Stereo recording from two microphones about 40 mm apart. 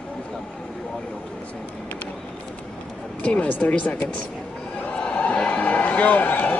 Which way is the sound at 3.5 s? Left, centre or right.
Left.